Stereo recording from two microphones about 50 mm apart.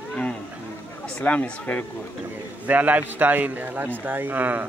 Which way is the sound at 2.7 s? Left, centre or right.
Right.